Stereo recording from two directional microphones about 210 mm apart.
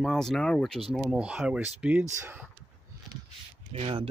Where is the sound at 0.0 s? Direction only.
Centre (ahead or behind).